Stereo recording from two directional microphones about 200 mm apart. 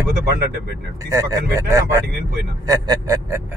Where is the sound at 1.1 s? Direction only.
15° right (ahead or behind).